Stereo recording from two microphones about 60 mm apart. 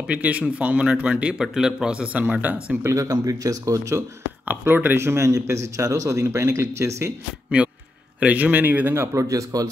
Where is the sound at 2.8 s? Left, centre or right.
Right.